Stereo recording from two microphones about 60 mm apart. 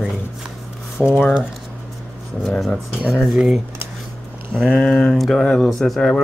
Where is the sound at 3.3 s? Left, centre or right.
Centre.